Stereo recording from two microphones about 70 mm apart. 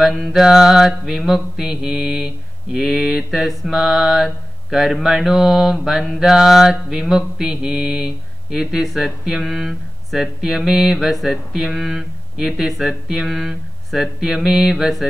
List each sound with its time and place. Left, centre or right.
0.0 s mantra: centre